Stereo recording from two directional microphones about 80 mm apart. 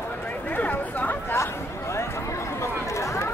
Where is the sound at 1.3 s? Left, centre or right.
Left.